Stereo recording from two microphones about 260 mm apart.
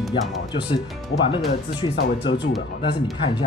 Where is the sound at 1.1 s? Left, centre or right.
Left.